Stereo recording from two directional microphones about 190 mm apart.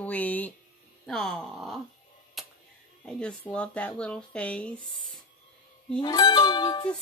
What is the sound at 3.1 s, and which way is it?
Speech, 5° left (ahead or behind).